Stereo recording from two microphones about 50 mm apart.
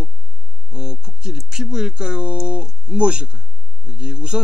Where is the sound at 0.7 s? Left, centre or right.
Centre.